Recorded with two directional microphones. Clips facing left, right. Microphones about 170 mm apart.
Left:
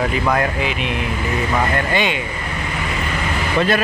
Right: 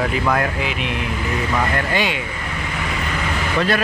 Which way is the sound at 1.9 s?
5° right (ahead or behind).